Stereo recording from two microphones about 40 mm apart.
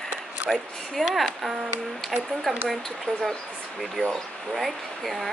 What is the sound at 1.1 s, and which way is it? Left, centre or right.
Speech, centre.